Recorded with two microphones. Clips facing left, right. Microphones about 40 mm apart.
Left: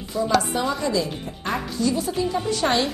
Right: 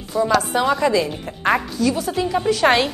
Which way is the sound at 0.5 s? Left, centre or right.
Right.